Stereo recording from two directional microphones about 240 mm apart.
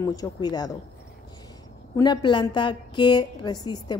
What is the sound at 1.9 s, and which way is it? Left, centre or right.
Speech, centre.